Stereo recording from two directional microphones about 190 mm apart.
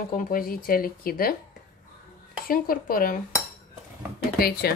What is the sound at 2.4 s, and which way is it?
Speech, 50° left (ahead or behind).